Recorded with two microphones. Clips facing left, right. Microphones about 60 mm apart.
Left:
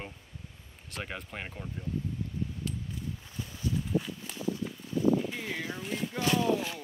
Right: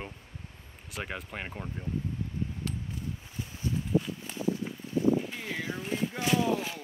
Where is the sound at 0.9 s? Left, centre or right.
Centre.